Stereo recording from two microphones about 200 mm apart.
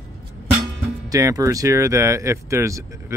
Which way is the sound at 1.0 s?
15° right (ahead or behind).